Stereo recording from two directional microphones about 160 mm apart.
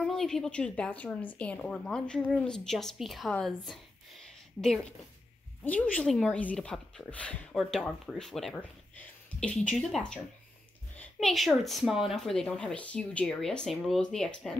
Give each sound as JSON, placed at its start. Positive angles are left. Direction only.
{"t": 0.0, "sound": "speech", "side_deg": 5}